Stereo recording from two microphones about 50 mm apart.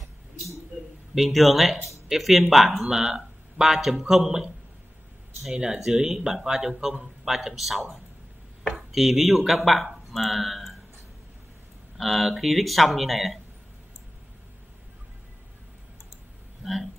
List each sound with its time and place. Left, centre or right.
1.1 s speech: centre
5.5 s speech: centre
12.0 s speech: centre